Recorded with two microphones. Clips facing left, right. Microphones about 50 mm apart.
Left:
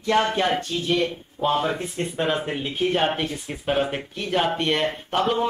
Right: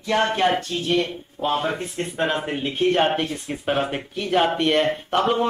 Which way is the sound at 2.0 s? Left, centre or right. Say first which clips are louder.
Right 1 dB; centre.